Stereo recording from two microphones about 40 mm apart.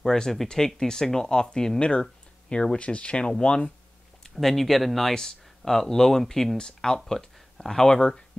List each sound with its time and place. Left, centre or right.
0.0 s speech: centre
1.8 s speech: left
4.2 s speech: centre